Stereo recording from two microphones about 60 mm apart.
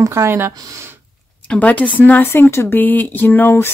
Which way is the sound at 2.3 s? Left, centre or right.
Left.